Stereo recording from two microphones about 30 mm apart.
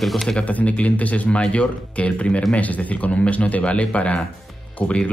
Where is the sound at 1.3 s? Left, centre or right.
Left.